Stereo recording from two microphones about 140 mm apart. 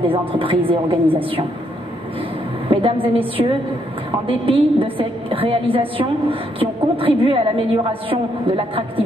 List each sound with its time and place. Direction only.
0.1 s a woman's voice: 40° right (ahead or behind)
2.7 s a woman's voice: 40° right (ahead or behind)